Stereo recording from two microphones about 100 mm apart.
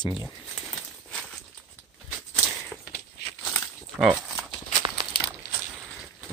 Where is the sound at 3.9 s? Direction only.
5° right (ahead or behind).